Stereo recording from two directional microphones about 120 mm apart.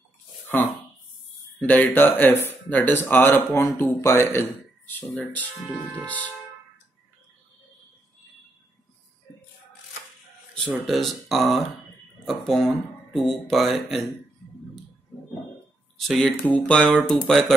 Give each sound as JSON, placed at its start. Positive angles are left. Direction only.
{"t": 1.6, "sound": "speech", "side_deg": 15}
{"t": 6.0, "sound": "speech", "side_deg": 10}
{"t": 10.5, "sound": "speech", "side_deg": 5}
{"t": 16.0, "sound": "speech", "side_deg": 5}